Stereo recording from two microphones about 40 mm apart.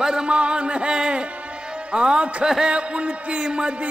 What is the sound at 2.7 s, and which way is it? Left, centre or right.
Music, right.